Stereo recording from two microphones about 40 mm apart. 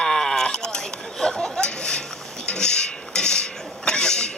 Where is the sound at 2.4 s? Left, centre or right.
Left.